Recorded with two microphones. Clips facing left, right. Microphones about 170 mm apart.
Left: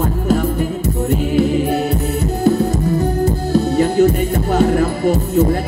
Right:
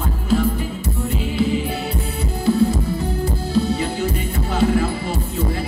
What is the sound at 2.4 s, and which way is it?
Music, 50° left (ahead or behind).